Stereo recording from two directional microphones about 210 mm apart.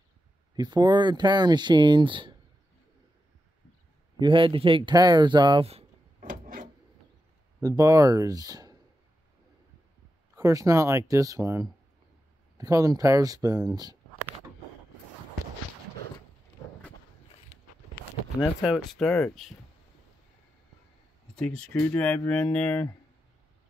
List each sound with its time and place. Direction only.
0.6 s speech: 20° right (ahead or behind)
4.2 s speech: 25° right (ahead or behind); by 6.7 s 40° right (ahead or behind)
7.6 s speech: 15° right (ahead or behind)
10.3 s speech: 15° right (ahead or behind)
18.4 s speech: 5° right (ahead or behind)
21.4 s speech: 5° left (ahead or behind)